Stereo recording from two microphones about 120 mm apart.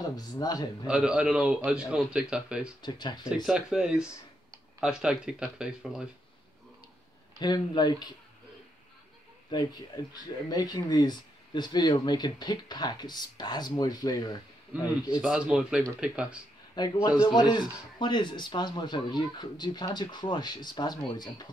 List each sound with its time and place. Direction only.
0.1 s speech: 30° left (ahead or behind)
0.8 s a man's voice: 5° right (ahead or behind)
2.8 s speech: 35° left (ahead or behind)
3.4 s a man's voice: 5° right (ahead or behind)
7.3 s speech: 35° left (ahead or behind)
9.5 s speech: 35° left (ahead or behind)
15.0 s a man's voice: 10° right (ahead or behind)
16.7 s speech: 35° left (ahead or behind)